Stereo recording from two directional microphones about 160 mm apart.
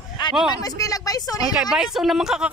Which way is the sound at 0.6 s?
20° left (ahead or behind).